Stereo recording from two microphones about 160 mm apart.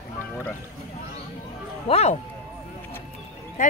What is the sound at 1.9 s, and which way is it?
Speech, 40° left (ahead or behind).